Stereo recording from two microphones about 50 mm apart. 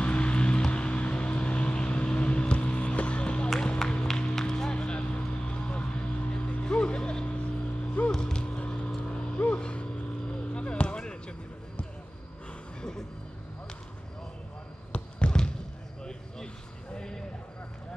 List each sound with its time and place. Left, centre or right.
0.0 s vehicle: left
4.1 s music: centre
8.1 s a sound: centre
14.9 s basketball bounce: left
16.0 s vehicle: centre
16.9 s a sound: centre